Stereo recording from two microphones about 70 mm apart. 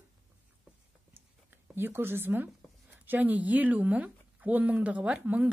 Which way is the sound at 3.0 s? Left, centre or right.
Right.